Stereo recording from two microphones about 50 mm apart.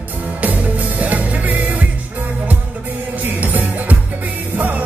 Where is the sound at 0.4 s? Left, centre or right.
Right.